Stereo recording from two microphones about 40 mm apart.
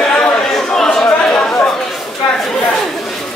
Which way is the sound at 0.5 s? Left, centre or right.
Centre.